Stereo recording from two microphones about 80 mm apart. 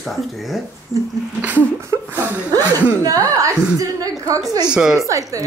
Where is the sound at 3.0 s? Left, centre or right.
Right.